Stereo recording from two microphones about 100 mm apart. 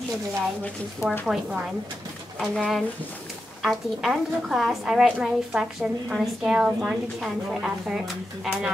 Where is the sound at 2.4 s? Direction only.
Centre (ahead or behind).